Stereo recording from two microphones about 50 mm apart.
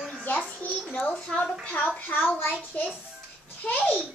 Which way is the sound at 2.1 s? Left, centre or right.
Left.